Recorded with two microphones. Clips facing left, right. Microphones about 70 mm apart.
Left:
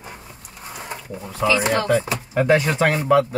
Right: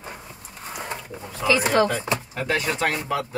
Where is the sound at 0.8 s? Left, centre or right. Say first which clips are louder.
Left 1 dB; centre.